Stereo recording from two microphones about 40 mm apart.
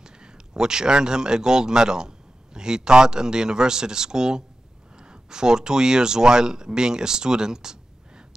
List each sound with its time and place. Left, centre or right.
0.0 s speech: centre